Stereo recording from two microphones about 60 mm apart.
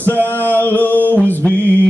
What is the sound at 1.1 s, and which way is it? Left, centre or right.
Music, left.